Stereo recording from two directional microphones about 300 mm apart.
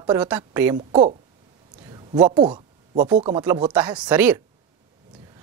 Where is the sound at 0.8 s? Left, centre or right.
Right.